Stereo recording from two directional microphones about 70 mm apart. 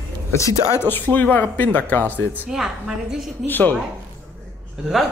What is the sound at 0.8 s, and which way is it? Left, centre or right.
Speech, left.